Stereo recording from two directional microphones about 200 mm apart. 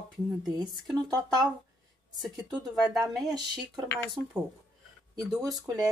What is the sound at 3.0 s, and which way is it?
Speech, 20° right (ahead or behind).